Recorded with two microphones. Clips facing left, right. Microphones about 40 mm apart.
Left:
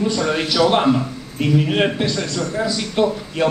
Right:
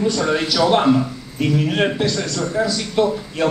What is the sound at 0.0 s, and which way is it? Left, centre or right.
A man's voice, centre.